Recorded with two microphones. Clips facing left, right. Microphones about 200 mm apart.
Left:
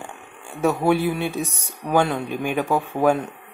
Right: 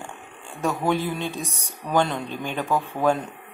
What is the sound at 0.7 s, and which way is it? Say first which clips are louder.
Speech: left 4 dB; 10° left (ahead or behind).